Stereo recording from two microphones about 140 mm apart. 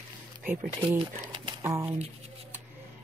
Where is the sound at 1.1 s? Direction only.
30° right (ahead or behind).